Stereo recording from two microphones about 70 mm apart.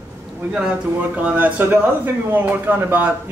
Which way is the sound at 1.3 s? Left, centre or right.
Right.